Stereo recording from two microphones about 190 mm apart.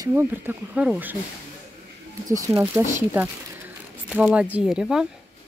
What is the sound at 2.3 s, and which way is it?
Speech, 15° right (ahead or behind).